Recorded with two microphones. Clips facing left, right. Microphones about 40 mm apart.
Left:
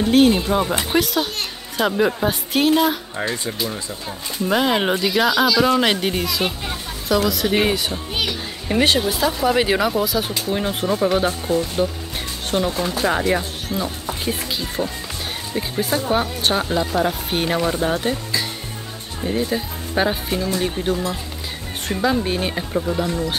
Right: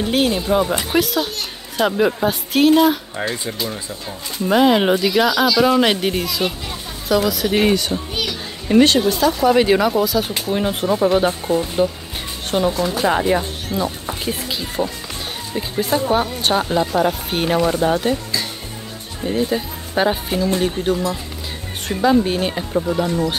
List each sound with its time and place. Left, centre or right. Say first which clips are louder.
0.5 s speech: right 2 dB; centre
8.1 s speech: even; centre
19.2 s speech: right 2 dB; centre
22.8 s speech: right 3 dB; centre